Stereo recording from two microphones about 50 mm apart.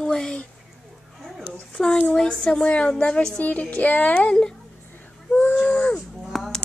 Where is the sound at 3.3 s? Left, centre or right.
Left.